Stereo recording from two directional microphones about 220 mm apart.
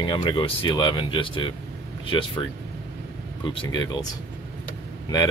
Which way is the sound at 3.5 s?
20° left (ahead or behind).